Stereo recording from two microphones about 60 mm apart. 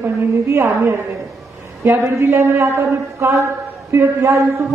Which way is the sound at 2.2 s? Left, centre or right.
Right.